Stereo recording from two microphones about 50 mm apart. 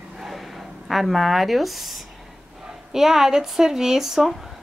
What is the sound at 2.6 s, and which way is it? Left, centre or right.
Speech, centre.